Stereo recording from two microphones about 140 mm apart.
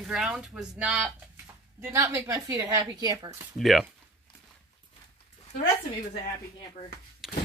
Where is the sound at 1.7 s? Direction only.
20° right (ahead or behind).